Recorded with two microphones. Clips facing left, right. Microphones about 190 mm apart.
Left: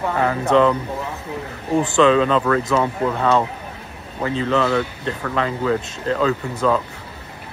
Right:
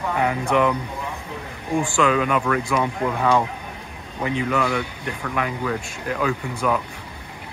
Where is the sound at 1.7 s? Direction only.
20° left (ahead or behind).